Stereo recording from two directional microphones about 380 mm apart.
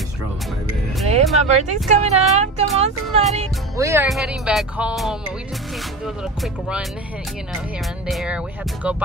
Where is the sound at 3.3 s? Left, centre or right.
Centre.